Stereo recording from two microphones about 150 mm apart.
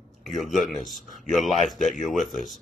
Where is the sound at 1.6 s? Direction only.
55° left (ahead or behind).